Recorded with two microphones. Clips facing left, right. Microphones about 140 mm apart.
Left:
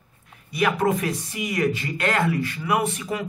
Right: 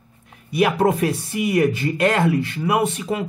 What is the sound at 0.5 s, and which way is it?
Speech, 25° right (ahead or behind).